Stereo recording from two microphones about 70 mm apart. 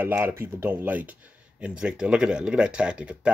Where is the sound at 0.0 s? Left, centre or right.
Right.